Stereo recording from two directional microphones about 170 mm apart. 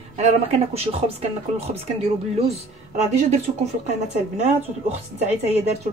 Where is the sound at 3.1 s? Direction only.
40° right (ahead or behind).